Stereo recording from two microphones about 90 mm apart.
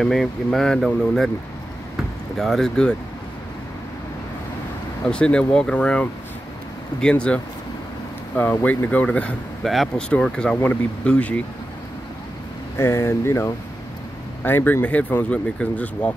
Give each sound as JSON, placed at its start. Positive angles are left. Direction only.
{"t": 0.0, "sound": "speech", "side_deg": 0}
{"t": 2.3, "sound": "speech", "side_deg": 0}
{"t": 5.0, "sound": "speech", "side_deg": 10}
{"t": 8.6, "sound": "speech", "side_deg": 15}
{"t": 9.6, "sound": "speech", "side_deg": 0}
{"t": 12.7, "sound": "speech", "side_deg": 30}